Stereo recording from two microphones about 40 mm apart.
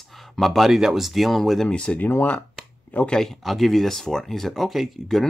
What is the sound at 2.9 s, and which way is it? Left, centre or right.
Speech, left.